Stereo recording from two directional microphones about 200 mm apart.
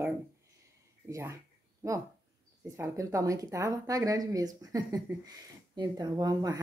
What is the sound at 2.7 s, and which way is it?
Speech, 15° right (ahead or behind).